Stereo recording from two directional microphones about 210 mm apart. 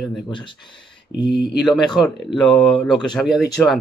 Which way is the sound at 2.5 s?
20° left (ahead or behind).